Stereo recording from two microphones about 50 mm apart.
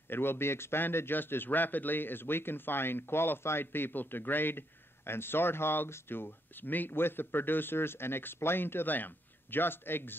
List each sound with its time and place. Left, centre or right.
0.1 s a man's voice: left